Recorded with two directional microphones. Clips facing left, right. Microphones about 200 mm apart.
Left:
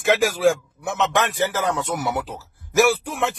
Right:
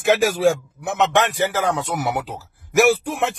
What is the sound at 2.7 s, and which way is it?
Speech, 20° right (ahead or behind).